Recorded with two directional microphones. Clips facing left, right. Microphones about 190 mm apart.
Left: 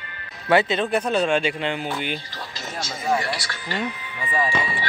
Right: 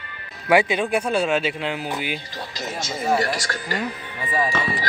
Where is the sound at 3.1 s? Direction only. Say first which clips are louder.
Right 3 dB; 45° right (ahead or behind).